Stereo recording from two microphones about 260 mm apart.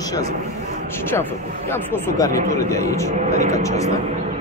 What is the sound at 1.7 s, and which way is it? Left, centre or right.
Speech, centre.